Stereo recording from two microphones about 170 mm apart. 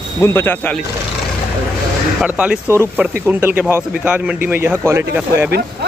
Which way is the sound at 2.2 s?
5° right (ahead or behind).